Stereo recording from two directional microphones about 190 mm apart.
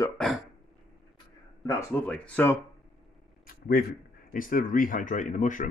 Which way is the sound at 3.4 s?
50° left (ahead or behind).